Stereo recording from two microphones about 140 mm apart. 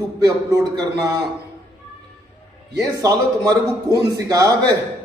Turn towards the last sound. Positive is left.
turn(degrees=-25)  # may be behind; listen again after turning